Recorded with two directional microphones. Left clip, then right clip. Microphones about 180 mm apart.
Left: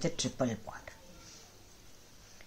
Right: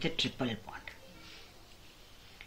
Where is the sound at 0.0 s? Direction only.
60° left (ahead or behind).